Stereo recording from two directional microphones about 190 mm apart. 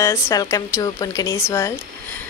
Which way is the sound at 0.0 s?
15° left (ahead or behind).